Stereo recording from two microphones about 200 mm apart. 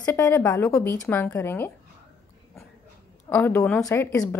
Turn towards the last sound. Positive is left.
turn(degrees=10)  # may be behind; listen again after turning